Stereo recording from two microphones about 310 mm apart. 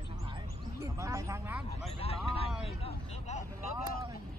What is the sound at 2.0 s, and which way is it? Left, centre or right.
Speech, centre.